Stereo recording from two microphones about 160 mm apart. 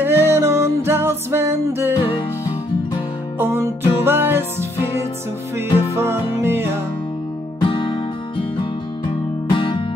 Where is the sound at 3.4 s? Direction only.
15° right (ahead or behind).